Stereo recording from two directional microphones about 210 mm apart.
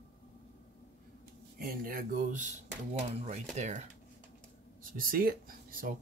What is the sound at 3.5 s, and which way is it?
Speech, 35° right (ahead or behind).